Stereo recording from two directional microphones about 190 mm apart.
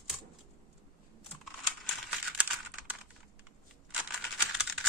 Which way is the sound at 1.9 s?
5° right (ahead or behind).